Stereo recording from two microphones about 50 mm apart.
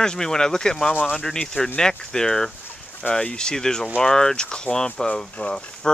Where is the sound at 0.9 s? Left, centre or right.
Left.